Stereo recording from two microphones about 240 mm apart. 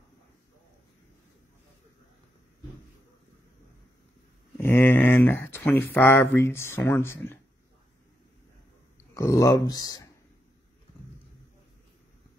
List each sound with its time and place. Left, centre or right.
4.6 s speech: centre
9.1 s speech: centre